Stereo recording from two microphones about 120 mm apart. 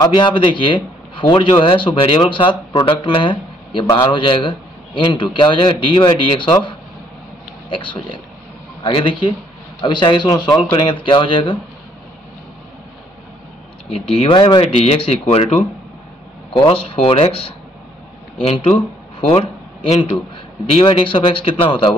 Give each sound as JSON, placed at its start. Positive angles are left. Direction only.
{"t": 0.1, "sound": "a man's voice", "side_deg": 45}
{"t": 13.8, "sound": "speech", "side_deg": 55}
{"t": 16.5, "sound": "speech", "side_deg": 45}
{"t": 18.4, "sound": "a man's voice", "side_deg": 60}